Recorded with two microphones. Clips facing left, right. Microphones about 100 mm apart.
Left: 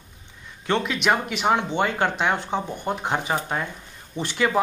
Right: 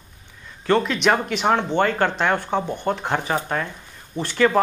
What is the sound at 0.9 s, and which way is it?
Speech, 5° left (ahead or behind).